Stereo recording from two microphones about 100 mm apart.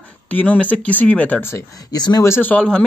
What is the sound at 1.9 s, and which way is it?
Speech, 45° left (ahead or behind).